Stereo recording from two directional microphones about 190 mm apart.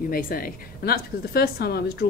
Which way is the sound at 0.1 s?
50° left (ahead or behind).